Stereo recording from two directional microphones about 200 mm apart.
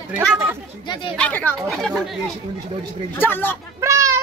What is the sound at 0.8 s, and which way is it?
Speech, 20° left (ahead or behind).